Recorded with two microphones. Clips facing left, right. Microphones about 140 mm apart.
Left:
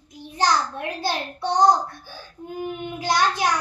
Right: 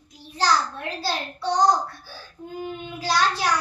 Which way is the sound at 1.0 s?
20° left (ahead or behind).